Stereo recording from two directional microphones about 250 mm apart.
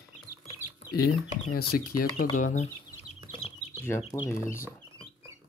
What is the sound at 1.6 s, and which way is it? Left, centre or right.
Speech, left.